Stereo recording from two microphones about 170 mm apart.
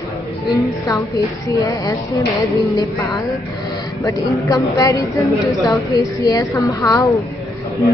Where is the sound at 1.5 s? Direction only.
20° left (ahead or behind).